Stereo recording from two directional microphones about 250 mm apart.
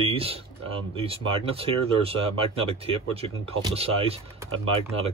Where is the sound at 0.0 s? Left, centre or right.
Right.